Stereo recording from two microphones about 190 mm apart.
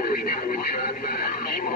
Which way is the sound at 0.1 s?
50° left (ahead or behind).